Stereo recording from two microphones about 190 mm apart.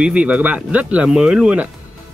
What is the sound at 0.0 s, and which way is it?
Speech, 5° right (ahead or behind).